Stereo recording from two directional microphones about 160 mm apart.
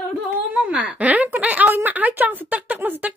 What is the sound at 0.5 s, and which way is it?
Speech, 10° right (ahead or behind).